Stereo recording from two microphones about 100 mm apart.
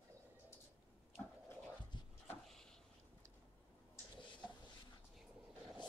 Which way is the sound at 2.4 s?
5° left (ahead or behind).